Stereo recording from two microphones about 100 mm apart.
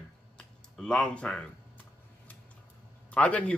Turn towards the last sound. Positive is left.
turn(degrees=10)  # may be behind; listen again after turning